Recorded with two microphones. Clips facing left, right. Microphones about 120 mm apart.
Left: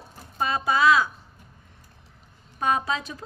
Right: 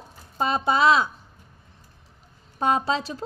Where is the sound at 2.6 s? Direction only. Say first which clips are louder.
Right 2 dB; 30° right (ahead or behind).